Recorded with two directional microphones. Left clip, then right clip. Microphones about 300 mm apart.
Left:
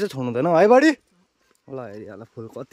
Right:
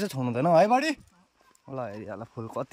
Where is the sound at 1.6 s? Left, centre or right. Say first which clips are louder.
Left 1 dB; centre.